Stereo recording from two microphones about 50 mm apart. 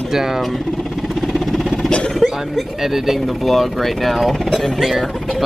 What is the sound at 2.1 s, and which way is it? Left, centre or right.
Speech, centre.